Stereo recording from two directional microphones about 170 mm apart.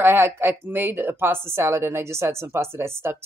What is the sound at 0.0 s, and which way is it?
A woman's voice, 15° right (ahead or behind).